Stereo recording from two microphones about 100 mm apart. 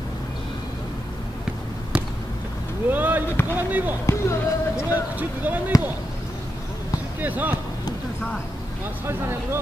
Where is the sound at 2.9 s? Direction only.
15° right (ahead or behind).